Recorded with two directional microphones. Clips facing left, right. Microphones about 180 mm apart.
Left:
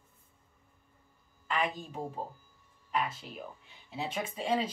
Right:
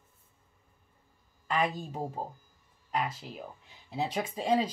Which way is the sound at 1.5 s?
40° right (ahead or behind).